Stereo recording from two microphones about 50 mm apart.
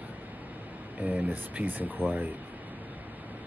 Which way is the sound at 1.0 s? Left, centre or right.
Right.